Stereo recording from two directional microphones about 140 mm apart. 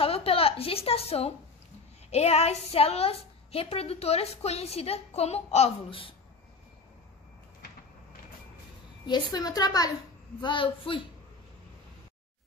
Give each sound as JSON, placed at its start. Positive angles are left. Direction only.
{"t": 0.0, "sound": "a woman's voice", "side_deg": 40}
{"t": 9.0, "sound": "a woman's voice", "side_deg": 30}
{"t": 10.4, "sound": "speech", "side_deg": 40}